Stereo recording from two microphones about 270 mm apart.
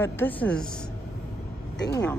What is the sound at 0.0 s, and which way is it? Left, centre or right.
A woman's voice, centre.